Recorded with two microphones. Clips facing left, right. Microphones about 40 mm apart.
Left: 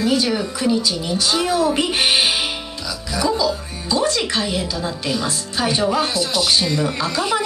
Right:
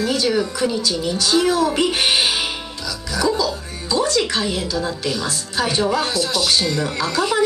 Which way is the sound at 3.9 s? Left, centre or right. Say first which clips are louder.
Right 1 dB; centre.